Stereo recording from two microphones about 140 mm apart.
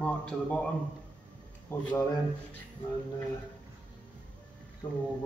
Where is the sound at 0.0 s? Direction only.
10° left (ahead or behind).